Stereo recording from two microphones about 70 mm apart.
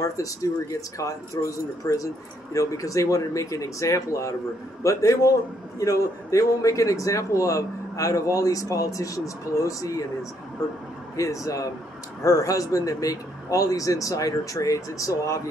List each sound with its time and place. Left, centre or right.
0.0 s a man's voice: left
11.1 s a man's voice: left